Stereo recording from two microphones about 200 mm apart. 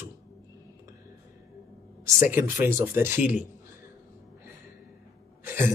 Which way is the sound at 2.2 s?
10° right (ahead or behind).